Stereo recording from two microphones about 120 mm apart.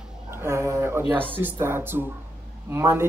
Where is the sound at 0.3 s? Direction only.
20° right (ahead or behind).